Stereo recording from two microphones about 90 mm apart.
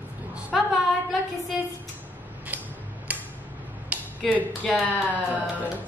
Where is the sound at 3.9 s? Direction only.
15° right (ahead or behind).